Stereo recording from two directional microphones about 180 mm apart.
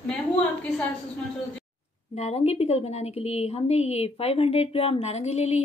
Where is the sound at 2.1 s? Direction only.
35° left (ahead or behind).